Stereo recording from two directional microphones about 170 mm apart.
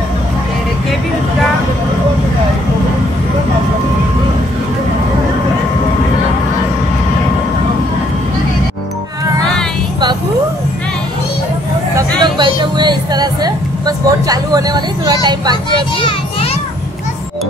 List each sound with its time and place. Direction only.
12.2 s vehicle: 25° right (ahead or behind)